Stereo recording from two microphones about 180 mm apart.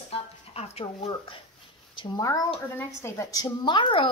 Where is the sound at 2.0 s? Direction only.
20° left (ahead or behind).